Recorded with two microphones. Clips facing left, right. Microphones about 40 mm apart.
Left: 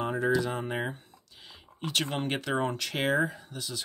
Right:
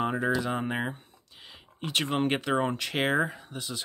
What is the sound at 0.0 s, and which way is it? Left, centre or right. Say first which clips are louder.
Speech: even; centre.